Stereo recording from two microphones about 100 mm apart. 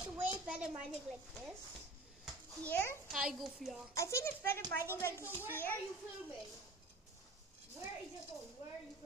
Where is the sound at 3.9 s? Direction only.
30° left (ahead or behind).